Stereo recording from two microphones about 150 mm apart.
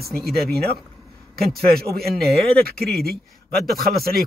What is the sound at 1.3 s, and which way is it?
Speech, 90° right.